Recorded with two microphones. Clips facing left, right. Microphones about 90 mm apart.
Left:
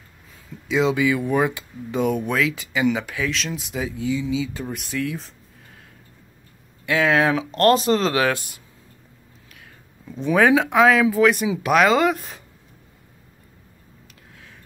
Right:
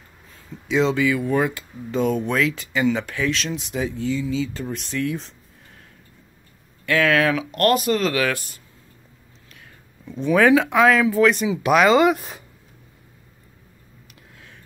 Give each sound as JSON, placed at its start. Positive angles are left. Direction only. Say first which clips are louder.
{"t": 0.7, "sound": "speech", "louder": "even", "side_deg": 5}
{"t": 1.0, "sound": "speech", "louder": "even", "side_deg": 20}
{"t": 6.9, "sound": "speech", "louder": "even", "side_deg": 20}
{"t": 10.2, "sound": "speech", "louder": "right 1 dB", "side_deg": 15}
{"t": 11.7, "sound": "speech", "louder": "right 2 dB", "side_deg": 0}